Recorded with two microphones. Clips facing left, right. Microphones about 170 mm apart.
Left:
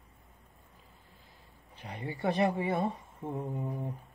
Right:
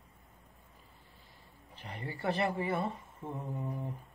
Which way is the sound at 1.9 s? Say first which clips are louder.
Left 3 dB; 15° left (ahead or behind).